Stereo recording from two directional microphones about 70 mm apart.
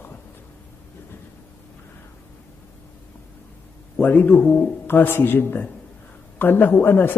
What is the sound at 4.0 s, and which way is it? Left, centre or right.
A man's voice, left.